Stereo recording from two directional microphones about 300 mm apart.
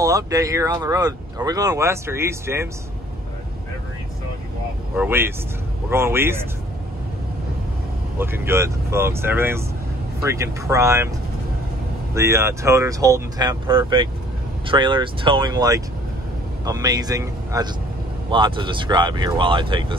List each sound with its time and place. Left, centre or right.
0.0 s speech: centre
4.9 s speech: centre
8.2 s speech: centre
12.1 s speech: centre